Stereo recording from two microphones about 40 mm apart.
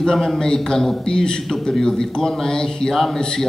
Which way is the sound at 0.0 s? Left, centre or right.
Centre.